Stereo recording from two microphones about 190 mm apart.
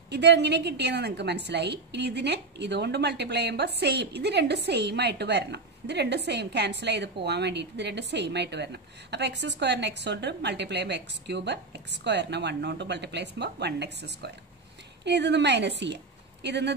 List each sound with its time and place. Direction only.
0.1 s a woman's voice: 65° right (ahead or behind)